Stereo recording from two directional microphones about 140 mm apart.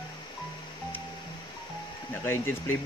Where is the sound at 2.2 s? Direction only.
20° left (ahead or behind).